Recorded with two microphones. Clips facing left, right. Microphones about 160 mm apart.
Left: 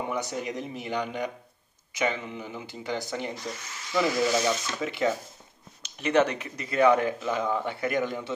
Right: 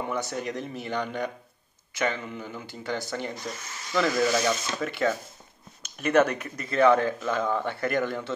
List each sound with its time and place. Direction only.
0.0 s a man's voice: 15° left (ahead or behind)